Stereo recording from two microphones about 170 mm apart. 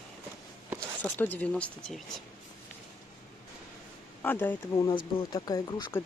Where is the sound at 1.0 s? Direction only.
10° left (ahead or behind).